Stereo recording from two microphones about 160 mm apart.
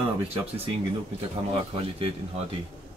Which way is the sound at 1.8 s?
35° right (ahead or behind).